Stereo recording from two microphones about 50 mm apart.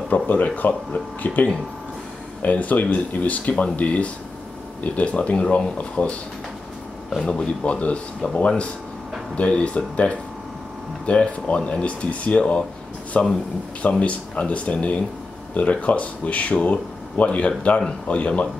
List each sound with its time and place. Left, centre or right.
0.1 s speech: left
7.2 s speech: left